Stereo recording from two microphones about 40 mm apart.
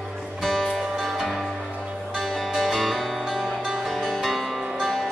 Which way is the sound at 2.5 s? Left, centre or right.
Centre.